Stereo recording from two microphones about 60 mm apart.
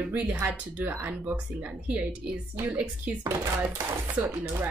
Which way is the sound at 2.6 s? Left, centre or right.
Right.